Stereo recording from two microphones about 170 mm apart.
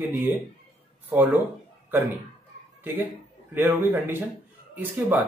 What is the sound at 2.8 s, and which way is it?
A man's voice, 10° right (ahead or behind).